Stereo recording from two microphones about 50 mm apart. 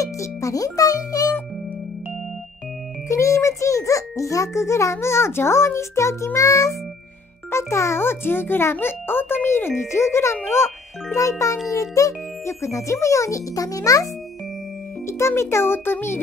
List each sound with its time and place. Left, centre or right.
0.0 s music: left
3.1 s a child's voice: left
7.5 s a child's voice: left
15.0 s a child's voice: left